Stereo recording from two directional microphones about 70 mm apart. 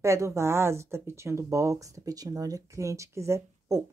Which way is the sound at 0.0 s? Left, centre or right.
Right.